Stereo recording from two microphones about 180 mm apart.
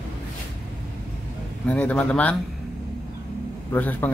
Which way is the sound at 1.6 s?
10° left (ahead or behind).